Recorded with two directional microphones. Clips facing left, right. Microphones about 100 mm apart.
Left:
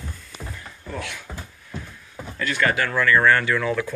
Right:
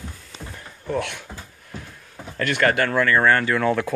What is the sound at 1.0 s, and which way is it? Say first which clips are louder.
Speech: right 6 dB; 60° right (ahead or behind).